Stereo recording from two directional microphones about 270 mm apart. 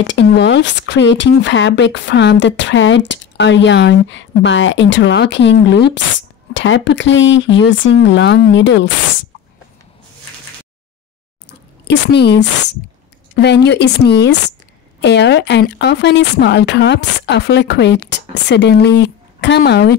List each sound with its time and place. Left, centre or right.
0.0 s speech: left
11.9 s speech: left